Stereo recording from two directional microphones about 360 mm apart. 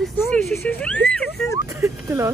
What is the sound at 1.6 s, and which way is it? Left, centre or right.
Speech, centre.